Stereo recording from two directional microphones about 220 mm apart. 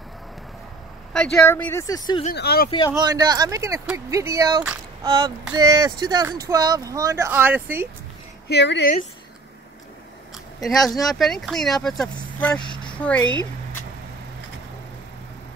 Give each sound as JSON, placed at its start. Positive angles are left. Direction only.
{"t": 1.1, "sound": "speech", "side_deg": 10}
{"t": 2.3, "sound": "a woman's voice", "side_deg": 45}
{"t": 3.0, "sound": "speech", "side_deg": -15}
{"t": 8.5, "sound": "a woman's voice", "side_deg": 50}
{"t": 10.6, "sound": "speech", "side_deg": 0}